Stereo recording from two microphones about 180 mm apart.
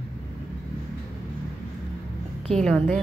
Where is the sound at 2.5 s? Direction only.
5° left (ahead or behind).